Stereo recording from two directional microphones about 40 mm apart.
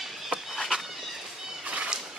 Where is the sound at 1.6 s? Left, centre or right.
Right.